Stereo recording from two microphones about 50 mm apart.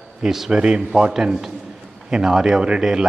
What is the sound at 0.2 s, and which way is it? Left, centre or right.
A man's voice, centre.